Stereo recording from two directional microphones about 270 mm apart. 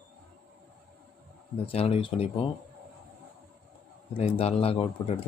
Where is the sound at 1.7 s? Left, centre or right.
Left.